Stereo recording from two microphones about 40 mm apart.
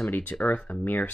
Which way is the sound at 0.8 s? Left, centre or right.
Left.